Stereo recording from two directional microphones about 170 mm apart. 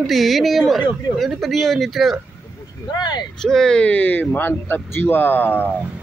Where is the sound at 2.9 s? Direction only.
25° left (ahead or behind).